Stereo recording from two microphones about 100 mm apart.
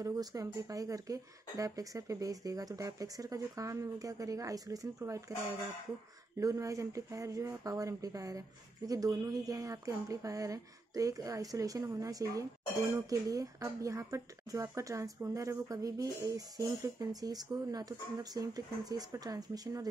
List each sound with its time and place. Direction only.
0.0 s speech: 35° right (ahead or behind)
6.4 s speech: 35° right (ahead or behind)